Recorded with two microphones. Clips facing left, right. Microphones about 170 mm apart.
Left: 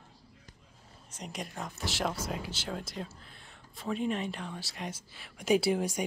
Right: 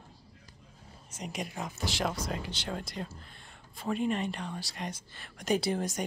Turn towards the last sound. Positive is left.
turn(degrees=10)  # may be behind; listen again after turning